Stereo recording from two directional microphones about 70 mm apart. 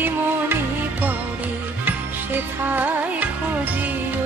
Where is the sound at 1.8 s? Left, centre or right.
Right.